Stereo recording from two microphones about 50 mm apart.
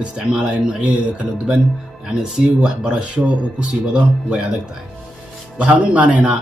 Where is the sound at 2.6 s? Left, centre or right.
Centre.